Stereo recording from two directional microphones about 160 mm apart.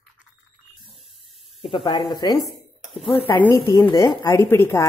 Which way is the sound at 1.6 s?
30° left (ahead or behind).